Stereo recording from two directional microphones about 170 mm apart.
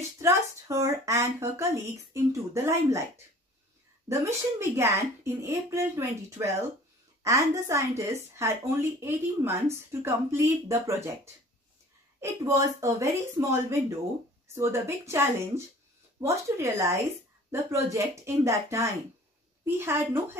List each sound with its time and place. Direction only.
0.2 s a woman's voice: 15° right (ahead or behind)
4.1 s a woman's voice: 15° right (ahead or behind)
12.2 s a woman's voice: 15° right (ahead or behind)